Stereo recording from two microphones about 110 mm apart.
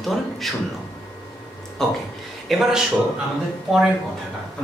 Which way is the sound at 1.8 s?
5° left (ahead or behind).